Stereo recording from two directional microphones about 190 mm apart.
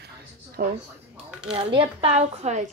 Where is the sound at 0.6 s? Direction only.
55° right (ahead or behind).